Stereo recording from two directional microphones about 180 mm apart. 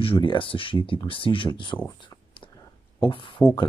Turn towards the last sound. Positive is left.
turn(degrees=30)  # may be behind; listen again after turning